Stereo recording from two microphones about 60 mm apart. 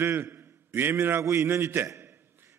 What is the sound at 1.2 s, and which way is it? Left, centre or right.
Speech, right.